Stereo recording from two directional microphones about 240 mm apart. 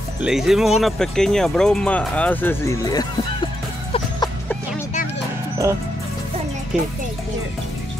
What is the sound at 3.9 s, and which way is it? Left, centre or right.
Music, centre.